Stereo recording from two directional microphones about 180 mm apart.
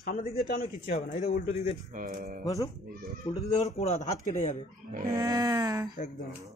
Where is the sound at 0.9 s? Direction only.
40° left (ahead or behind).